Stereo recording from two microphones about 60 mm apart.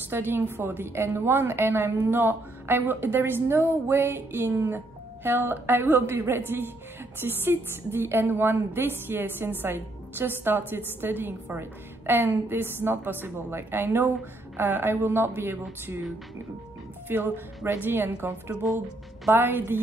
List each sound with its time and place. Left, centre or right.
0.1 s a woman's voice: right
17.1 s a woman's voice: right